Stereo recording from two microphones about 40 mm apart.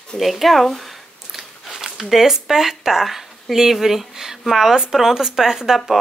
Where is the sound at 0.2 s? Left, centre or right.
Centre.